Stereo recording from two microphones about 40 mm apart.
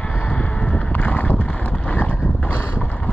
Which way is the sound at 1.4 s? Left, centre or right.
Left.